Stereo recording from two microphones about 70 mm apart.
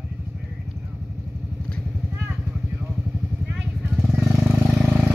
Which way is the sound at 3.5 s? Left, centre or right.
Centre.